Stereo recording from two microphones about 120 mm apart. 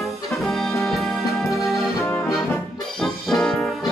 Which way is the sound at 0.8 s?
Centre (ahead or behind).